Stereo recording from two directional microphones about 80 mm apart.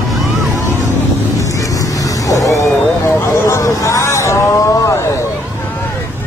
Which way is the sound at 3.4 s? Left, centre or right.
Left.